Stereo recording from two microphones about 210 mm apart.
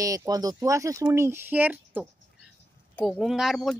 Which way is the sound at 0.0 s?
15° right (ahead or behind).